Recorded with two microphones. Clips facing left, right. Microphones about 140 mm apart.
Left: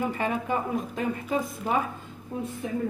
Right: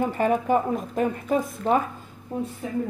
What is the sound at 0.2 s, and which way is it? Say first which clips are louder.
Speech: right 6 dB; 45° right (ahead or behind).